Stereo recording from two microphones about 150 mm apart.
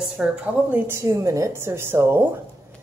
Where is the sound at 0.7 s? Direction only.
20° right (ahead or behind).